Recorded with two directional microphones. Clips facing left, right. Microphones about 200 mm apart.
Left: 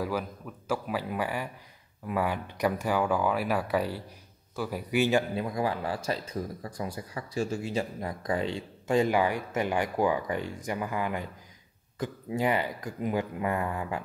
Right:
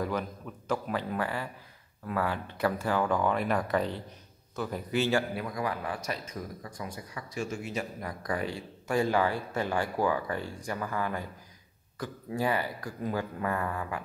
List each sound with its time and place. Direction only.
0.0 s a man's voice: 5° left (ahead or behind); by 14.0 s 20° left (ahead or behind)